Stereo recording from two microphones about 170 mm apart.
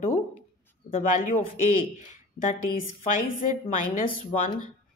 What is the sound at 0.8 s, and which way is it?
Speech, 50° left (ahead or behind).